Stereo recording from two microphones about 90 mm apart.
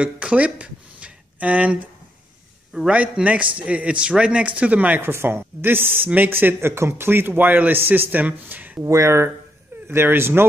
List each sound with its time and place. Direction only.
0.0 s a sound: 15° right (ahead or behind)
2.9 s a man's voice: 15° right (ahead or behind)
8.8 s speech: 35° right (ahead or behind)